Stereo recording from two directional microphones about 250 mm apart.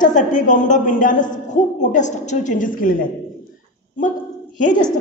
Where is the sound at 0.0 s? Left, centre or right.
Left.